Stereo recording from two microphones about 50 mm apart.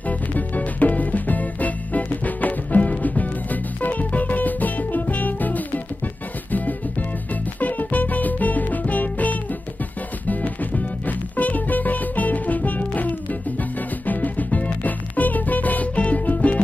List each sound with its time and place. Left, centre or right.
0.4 s music: left